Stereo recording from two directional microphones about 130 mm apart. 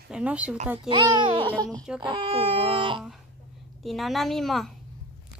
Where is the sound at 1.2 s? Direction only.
40° right (ahead or behind).